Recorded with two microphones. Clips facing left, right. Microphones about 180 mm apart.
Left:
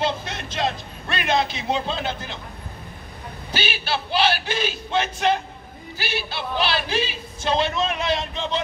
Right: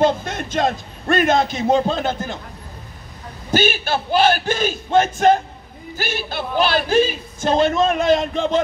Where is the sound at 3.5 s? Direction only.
45° right (ahead or behind).